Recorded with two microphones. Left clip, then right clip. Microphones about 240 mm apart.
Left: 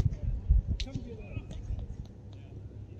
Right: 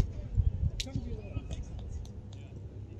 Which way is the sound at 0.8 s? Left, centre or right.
Right.